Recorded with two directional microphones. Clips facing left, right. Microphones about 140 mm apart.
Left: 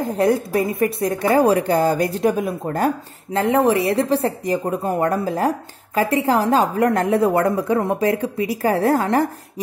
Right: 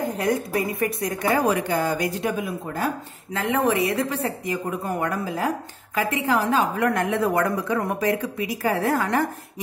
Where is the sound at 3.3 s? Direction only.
30° left (ahead or behind).